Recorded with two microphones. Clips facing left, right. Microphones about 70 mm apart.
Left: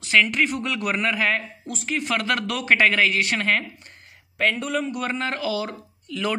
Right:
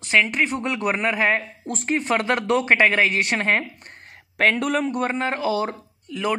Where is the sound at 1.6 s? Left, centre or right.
Right.